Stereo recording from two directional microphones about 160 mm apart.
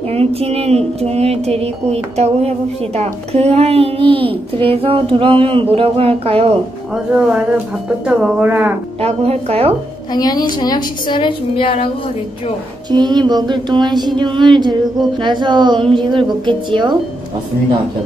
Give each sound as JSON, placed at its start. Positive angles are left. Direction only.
{"t": 0.1, "sound": "a child's voice", "side_deg": -40}
{"t": 7.2, "sound": "speech", "side_deg": -5}
{"t": 9.0, "sound": "a child's voice", "side_deg": -40}
{"t": 10.1, "sound": "a woman's voice", "side_deg": 25}
{"t": 12.9, "sound": "a sound", "side_deg": -25}